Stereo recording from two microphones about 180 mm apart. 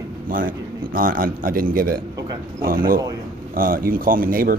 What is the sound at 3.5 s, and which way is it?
Speech, 50° right (ahead or behind).